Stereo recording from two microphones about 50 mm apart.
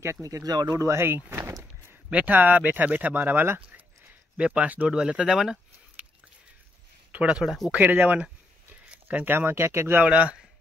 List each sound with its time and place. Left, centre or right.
0.7 s speech: right
1.1 s a sound: right
2.0 s speech: right
4.4 s speech: right
4.8 s speech: centre
7.1 s speech: right
7.4 s speech: centre
7.7 s speech: right
9.0 s speech: right
10.0 s speech: right